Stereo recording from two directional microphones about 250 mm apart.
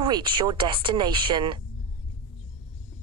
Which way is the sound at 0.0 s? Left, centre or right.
Centre.